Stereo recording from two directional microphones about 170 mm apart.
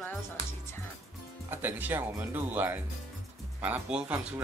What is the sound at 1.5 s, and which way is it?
Speech, 10° right (ahead or behind).